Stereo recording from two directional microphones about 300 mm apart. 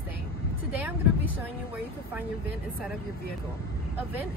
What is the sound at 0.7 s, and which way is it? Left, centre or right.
Speech, centre.